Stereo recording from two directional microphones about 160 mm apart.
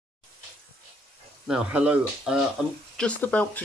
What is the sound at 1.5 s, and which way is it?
Speech, 10° right (ahead or behind).